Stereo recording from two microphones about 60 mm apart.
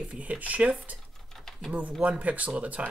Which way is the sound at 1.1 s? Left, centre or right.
Centre.